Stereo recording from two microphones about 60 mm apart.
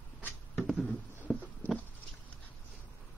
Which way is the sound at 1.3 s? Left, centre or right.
Centre.